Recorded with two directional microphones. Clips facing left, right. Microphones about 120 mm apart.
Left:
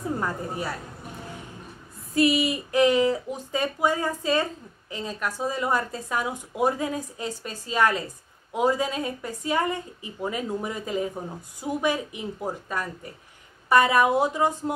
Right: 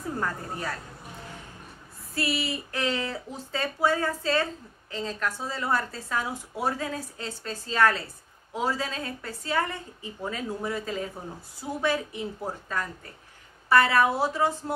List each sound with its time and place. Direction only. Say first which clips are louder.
0.2 s a woman's voice: left 2 dB; 10° left (ahead or behind)
2.1 s a woman's voice: left 8 dB; 20° left (ahead or behind)